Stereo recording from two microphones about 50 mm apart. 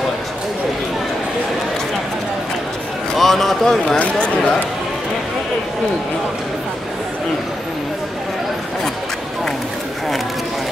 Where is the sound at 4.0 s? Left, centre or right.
Left.